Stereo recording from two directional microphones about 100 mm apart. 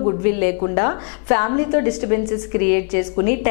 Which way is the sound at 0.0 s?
15° left (ahead or behind).